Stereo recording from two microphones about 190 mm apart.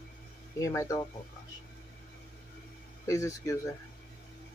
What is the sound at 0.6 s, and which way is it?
Speech, 15° left (ahead or behind).